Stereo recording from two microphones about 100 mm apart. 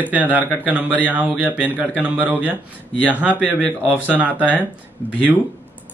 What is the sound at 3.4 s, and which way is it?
Speech, 15° left (ahead or behind).